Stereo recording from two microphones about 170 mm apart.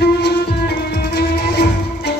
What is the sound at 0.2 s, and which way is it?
Music, 70° left (ahead or behind).